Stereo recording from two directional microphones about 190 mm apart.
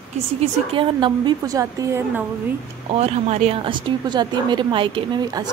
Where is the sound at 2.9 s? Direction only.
35° right (ahead or behind).